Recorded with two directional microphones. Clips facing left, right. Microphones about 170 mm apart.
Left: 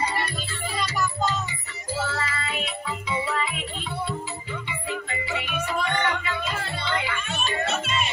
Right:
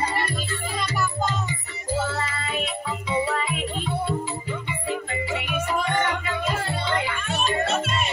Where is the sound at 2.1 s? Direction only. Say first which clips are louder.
Right 2 dB; 35° right (ahead or behind).